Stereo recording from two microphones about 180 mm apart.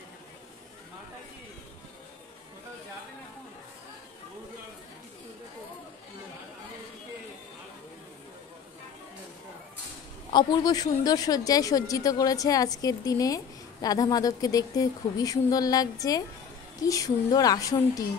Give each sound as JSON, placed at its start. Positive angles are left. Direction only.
{"t": 10.3, "sound": "a woman's voice", "side_deg": 25}